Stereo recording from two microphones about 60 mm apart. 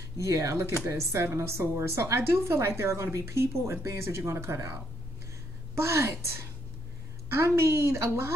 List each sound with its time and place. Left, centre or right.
0.2 s speech: right
0.8 s speech: right
5.8 s speech: right